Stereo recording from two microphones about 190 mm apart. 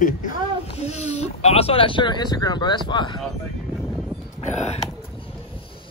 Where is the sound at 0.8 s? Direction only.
35° left (ahead or behind).